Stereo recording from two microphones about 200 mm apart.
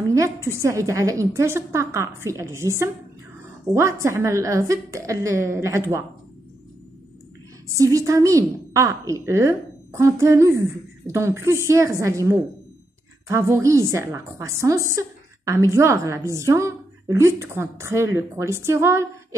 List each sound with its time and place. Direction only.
0.1 s a woman's voice: 15° right (ahead or behind)
7.7 s a woman's voice: 15° right (ahead or behind)